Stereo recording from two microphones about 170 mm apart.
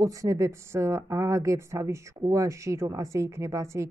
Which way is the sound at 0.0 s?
20° right (ahead or behind).